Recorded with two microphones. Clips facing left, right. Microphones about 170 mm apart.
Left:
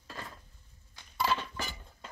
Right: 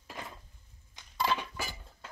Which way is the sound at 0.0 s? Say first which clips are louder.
Right 1 dB; 15° right (ahead or behind).